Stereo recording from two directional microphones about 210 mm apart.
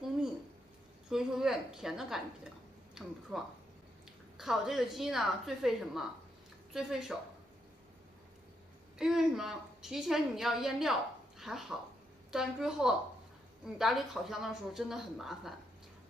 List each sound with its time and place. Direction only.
1.0 s a woman's voice: centre (ahead or behind)
8.9 s a woman's voice: centre (ahead or behind)